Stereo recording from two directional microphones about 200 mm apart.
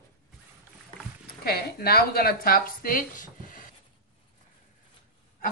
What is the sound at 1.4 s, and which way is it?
Speech, 50° left (ahead or behind).